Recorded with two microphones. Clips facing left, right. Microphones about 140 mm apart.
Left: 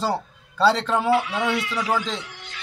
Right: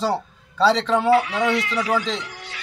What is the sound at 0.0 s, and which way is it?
A man's voice, 5° left (ahead or behind).